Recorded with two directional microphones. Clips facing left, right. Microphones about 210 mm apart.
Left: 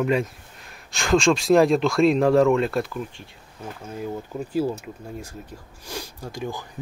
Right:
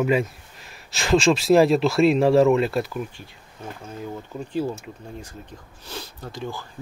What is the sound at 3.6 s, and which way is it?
Speech, 10° left (ahead or behind).